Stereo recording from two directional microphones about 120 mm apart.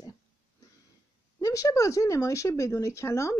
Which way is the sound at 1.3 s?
30° left (ahead or behind).